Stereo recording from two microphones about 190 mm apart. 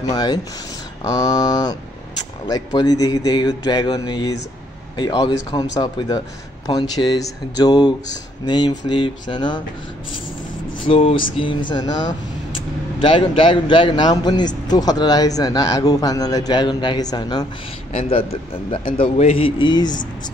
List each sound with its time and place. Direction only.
0.1 s a man's voice: 20° left (ahead or behind)
10.9 s a man's voice: 30° left (ahead or behind)
17.9 s a man's voice: 30° left (ahead or behind)